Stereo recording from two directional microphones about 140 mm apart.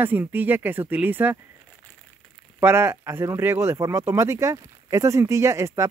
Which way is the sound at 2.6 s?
15° right (ahead or behind).